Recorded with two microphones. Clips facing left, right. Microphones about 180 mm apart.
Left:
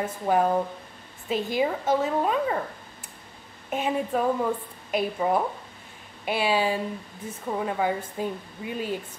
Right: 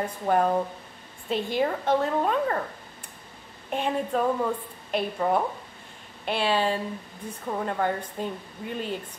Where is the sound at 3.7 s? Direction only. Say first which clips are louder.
Even; 5° left (ahead or behind).